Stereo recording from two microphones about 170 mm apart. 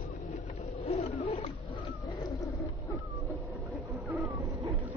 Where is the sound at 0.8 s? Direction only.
40° left (ahead or behind).